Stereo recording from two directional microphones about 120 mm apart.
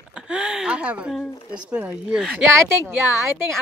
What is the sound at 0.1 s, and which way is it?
Speech, 5° right (ahead or behind).